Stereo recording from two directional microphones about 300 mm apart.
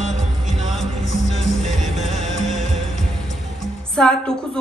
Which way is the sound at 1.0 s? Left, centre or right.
Left.